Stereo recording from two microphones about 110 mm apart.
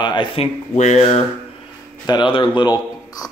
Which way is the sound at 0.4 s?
90° left.